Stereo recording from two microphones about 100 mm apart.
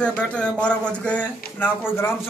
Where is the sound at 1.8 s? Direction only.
25° left (ahead or behind).